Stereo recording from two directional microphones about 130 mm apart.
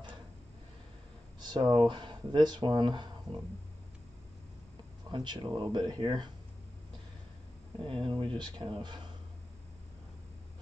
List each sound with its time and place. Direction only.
1.4 s speech: 35° right (ahead or behind)
5.1 s speech: 35° right (ahead or behind)
7.8 s speech: 40° right (ahead or behind)